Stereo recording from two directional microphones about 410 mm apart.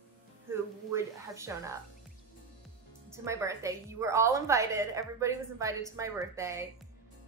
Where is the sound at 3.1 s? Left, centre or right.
Centre.